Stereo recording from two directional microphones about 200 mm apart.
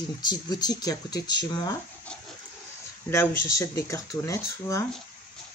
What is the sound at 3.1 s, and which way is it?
Speech, 15° left (ahead or behind).